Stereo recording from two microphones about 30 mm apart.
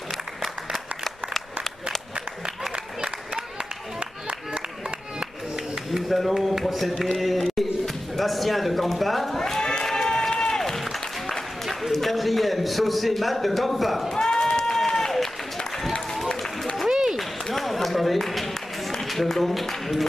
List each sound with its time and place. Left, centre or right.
0.7 s a sound: centre
2.7 s applause: right
6.0 s a man's voice: centre
7.5 s music: centre
9.3 s music: centre
10.0 s run: centre
10.6 s applause: centre
11.6 s a man's voice: centre
14.0 s a sound: left
14.9 s applause: centre
16.3 s a sound: centre
17.2 s a sound: centre
19.0 s speech: centre